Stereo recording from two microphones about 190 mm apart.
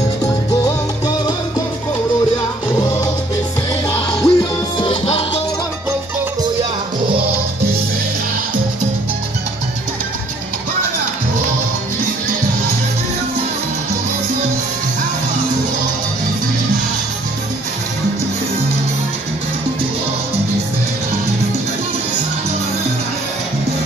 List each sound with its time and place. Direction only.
0.7 s music: 20° left (ahead or behind)
4.2 s music: 25° left (ahead or behind)